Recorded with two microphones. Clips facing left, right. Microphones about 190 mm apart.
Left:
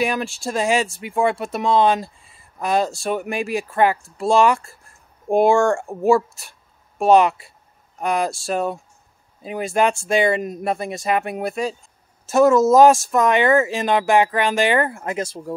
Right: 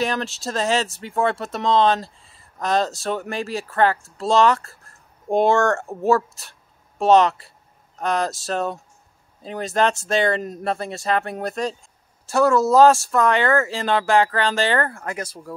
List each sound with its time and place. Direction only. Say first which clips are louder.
0.0 s speech: left 2 dB; 10° left (ahead or behind)